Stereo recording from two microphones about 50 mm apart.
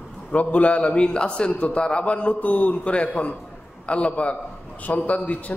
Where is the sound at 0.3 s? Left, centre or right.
Left.